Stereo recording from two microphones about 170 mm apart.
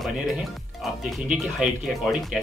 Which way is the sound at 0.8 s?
5° right (ahead or behind).